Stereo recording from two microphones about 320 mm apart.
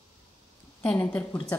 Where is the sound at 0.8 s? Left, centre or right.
Centre.